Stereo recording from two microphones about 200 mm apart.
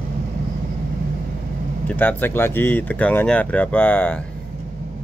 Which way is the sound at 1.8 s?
10° left (ahead or behind).